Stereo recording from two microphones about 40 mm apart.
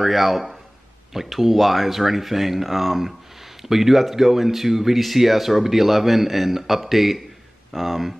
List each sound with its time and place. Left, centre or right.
0.0 s speech: centre